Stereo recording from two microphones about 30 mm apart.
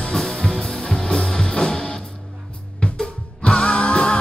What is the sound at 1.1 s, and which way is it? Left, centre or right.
Music, left.